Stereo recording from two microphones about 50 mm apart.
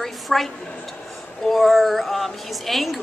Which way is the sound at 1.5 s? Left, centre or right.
Centre.